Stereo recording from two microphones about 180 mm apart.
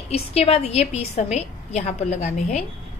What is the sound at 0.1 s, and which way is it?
A woman's voice, 35° left (ahead or behind).